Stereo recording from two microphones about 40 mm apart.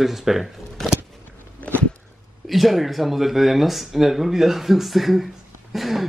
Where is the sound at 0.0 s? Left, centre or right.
Centre.